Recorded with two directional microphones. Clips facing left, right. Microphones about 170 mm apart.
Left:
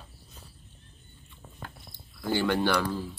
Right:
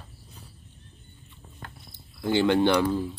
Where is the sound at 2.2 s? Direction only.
20° right (ahead or behind).